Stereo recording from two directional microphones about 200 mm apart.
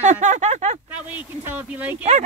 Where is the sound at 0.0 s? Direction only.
35° right (ahead or behind).